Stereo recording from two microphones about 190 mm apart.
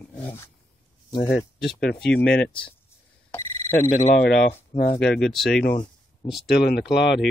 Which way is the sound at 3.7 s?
45° left (ahead or behind).